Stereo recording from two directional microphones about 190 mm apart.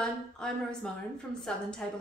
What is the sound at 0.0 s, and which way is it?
A woman's voice, 5° left (ahead or behind).